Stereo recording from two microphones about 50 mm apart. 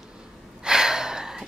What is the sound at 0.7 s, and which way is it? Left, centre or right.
Gasp, centre.